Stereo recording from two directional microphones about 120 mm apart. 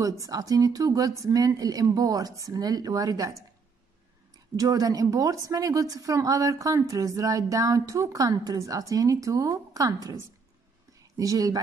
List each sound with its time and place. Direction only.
0.0 s speech: 30° right (ahead or behind)
4.6 s a woman's voice: 30° right (ahead or behind)